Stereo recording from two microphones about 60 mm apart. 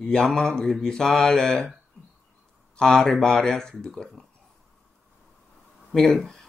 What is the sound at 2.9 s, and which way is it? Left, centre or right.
A man's voice, centre.